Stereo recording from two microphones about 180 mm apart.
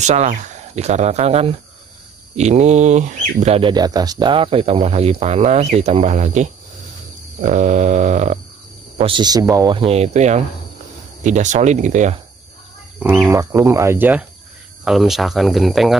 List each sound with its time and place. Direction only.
0.0 s speech: 40° right (ahead or behind)
3.7 s speech: 20° right (ahead or behind); by 8.4 s 40° right (ahead or behind)
8.9 s speech: 25° right (ahead or behind)
9.8 s speech: 35° right (ahead or behind)
13.0 s speech: 10° right (ahead or behind)